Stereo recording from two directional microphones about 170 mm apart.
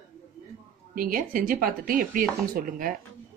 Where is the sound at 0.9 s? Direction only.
55° right (ahead or behind).